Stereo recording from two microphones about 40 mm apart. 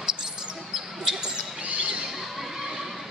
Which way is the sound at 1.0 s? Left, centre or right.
Centre.